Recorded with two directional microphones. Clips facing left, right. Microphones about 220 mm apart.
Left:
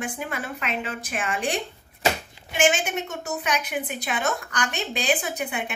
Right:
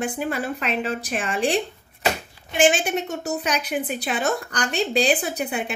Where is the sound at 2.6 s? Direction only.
35° right (ahead or behind).